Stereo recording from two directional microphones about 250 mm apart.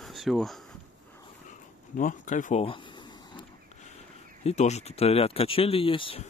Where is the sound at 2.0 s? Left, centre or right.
Left.